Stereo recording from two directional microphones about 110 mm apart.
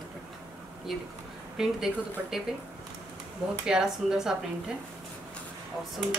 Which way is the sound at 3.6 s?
5° right (ahead or behind).